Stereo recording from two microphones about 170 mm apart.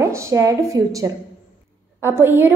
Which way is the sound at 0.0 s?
15° right (ahead or behind).